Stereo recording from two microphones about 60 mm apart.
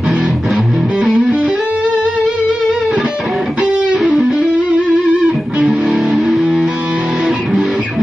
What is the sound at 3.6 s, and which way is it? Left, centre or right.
Music, centre.